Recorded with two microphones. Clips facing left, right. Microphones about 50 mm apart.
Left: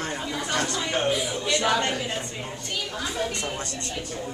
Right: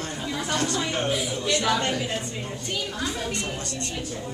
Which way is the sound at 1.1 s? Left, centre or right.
Centre.